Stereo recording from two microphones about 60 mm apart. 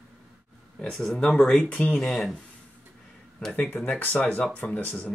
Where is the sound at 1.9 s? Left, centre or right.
Centre.